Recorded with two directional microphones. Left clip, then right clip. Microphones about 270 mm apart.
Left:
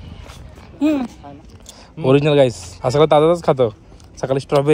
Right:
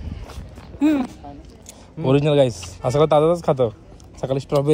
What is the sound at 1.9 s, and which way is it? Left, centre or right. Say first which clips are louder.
Speech: left 3 dB; centre.